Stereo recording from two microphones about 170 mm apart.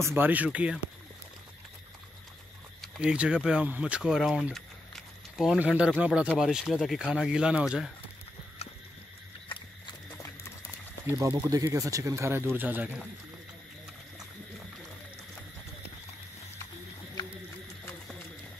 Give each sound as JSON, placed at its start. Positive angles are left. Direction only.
{"t": 0.0, "sound": "speech", "side_deg": -10}
{"t": 2.8, "sound": "speech", "side_deg": -5}
{"t": 8.6, "sound": "a sound", "side_deg": 35}
{"t": 11.1, "sound": "speech", "side_deg": -15}